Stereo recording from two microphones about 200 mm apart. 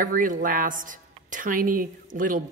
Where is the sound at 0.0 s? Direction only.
40° right (ahead or behind).